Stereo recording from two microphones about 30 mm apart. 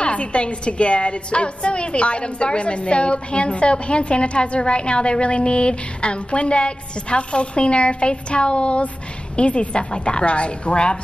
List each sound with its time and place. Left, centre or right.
0.0 s a woman's voice: left